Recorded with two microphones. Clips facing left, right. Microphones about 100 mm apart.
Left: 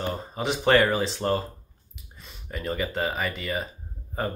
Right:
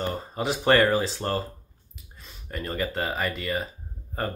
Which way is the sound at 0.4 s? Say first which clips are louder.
Even; centre (ahead or behind).